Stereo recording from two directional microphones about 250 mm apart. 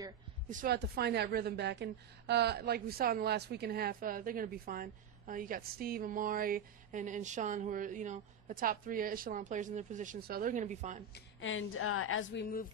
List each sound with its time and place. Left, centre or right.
0.5 s a woman's voice: right
11.1 s a woman's voice: left